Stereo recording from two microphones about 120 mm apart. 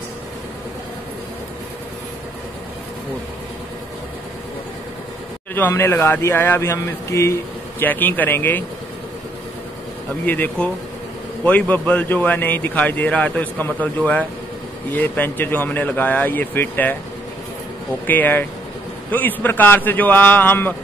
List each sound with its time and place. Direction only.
5.5 s speech: 20° left (ahead or behind)
10.2 s speech: 15° left (ahead or behind)
18.0 s speech: 15° left (ahead or behind)